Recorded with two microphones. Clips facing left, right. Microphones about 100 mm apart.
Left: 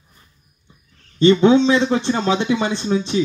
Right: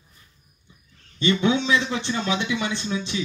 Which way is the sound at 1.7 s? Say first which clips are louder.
Left 7 dB; 50° left (ahead or behind).